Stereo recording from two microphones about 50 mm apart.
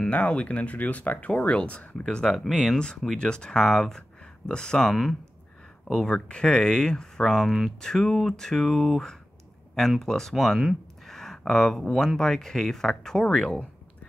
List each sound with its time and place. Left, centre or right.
0.1 s speech: left
2.4 s speech: centre
3.2 s speech: centre
6.0 s speech: left
7.4 s speech: centre
7.8 s speech: centre
13.3 s speech: left